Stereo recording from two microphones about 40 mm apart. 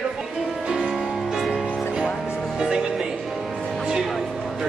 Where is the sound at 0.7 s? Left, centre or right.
Centre.